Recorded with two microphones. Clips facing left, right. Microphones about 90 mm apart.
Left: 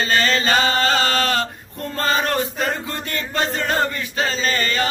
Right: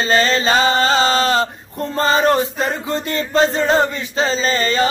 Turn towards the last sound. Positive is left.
turn(degrees=-30)  # may be behind; listen again after turning